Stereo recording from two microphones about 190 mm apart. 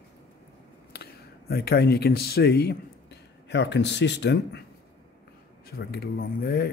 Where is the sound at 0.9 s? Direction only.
55° left (ahead or behind).